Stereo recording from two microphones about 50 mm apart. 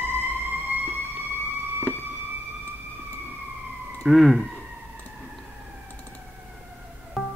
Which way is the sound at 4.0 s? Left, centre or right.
Centre.